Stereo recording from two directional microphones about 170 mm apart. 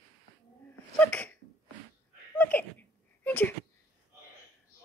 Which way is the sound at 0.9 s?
10° left (ahead or behind).